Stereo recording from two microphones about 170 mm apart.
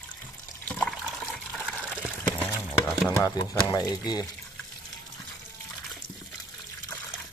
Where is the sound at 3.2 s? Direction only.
25° left (ahead or behind).